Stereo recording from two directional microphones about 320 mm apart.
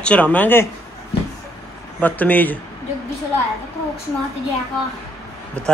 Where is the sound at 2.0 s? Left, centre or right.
Centre.